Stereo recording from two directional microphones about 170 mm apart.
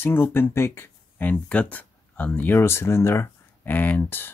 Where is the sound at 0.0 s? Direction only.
15° left (ahead or behind).